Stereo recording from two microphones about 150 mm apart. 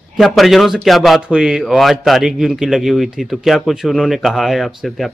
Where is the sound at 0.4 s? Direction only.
Centre (ahead or behind).